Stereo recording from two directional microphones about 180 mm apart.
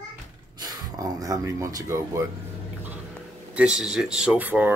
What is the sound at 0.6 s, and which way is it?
Speech, 20° right (ahead or behind).